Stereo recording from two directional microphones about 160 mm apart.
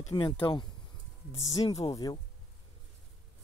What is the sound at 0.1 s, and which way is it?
Speech, 30° left (ahead or behind).